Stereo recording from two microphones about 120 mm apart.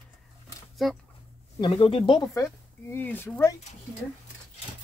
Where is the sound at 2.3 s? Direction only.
20° left (ahead or behind).